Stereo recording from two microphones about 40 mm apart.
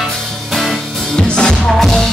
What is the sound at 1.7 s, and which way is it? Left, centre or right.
Music, centre.